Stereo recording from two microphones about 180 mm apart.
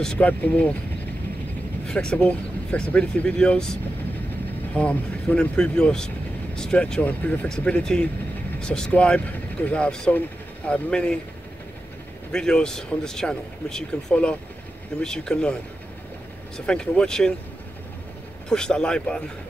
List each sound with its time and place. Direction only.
0.0 s speech: 5° left (ahead or behind)
1.9 s speech: 5° left (ahead or behind)
4.7 s speech: 5° left (ahead or behind)
12.3 s speech: 5° left (ahead or behind)
16.5 s speech: 5° left (ahead or behind)
18.5 s speech: 5° left (ahead or behind)